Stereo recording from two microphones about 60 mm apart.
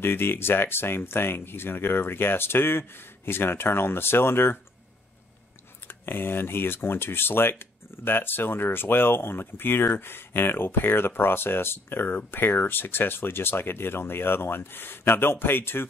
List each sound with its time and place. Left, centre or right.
0.0 s speech: left
5.9 s speech: left